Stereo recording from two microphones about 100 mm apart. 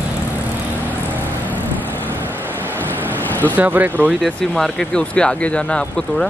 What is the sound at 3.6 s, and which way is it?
Speech, 15° right (ahead or behind).